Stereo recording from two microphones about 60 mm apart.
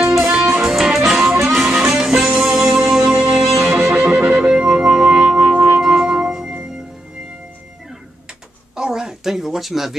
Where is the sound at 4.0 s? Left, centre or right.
Right.